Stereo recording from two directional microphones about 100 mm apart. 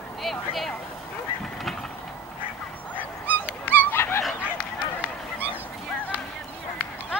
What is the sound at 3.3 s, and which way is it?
Dog, 20° left (ahead or behind).